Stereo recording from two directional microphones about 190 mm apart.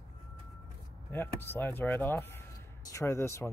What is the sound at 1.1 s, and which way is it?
Speech, 10° left (ahead or behind).